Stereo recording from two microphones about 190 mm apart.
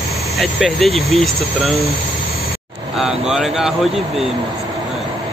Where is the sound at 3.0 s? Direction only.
Centre (ahead or behind).